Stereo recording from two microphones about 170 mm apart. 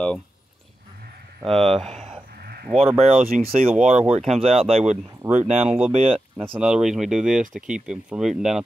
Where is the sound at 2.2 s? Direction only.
70° right (ahead or behind).